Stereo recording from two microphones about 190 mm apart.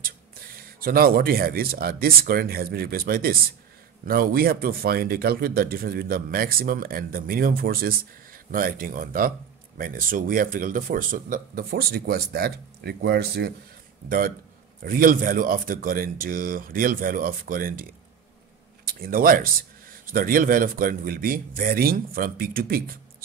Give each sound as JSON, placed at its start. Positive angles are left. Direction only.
{"t": 0.7, "sound": "speech", "side_deg": -50}
{"t": 18.9, "sound": "speech", "side_deg": -50}